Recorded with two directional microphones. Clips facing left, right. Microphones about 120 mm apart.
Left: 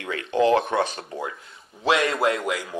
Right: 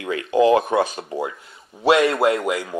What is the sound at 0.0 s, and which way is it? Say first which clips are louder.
Speech: right 4 dB; 5° right (ahead or behind).